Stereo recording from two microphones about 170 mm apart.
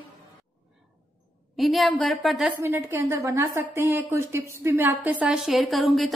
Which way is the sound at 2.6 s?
15° right (ahead or behind).